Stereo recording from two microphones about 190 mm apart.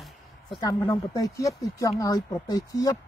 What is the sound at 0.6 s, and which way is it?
A woman's voice, 20° left (ahead or behind).